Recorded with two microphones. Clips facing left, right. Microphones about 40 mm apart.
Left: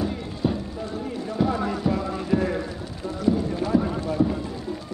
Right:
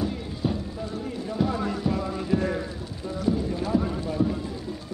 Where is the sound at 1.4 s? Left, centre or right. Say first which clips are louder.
Left 3 dB; centre.